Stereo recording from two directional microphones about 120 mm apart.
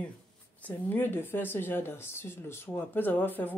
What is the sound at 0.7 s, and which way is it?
Speech, 15° left (ahead or behind).